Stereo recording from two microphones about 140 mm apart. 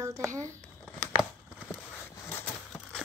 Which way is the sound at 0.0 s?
20° right (ahead or behind).